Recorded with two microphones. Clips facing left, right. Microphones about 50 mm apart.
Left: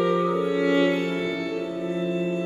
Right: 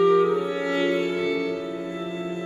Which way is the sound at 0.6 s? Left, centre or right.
Centre.